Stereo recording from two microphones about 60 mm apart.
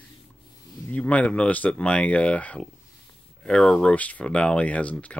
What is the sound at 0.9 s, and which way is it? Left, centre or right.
Speech, left.